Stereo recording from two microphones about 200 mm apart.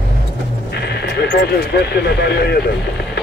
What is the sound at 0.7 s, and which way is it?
Speech, 55° left (ahead or behind).